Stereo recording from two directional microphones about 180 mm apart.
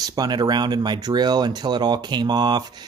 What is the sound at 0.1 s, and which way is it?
Speech, 20° right (ahead or behind).